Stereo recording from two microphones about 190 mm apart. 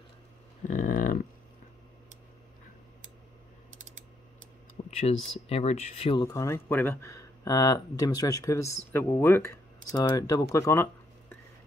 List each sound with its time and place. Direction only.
0.7 s a sound: 45° left (ahead or behind)
4.9 s speech: 35° left (ahead or behind)
6.2 s speech: 15° left (ahead or behind)